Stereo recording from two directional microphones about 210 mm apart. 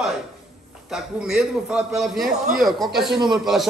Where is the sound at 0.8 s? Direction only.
Centre (ahead or behind).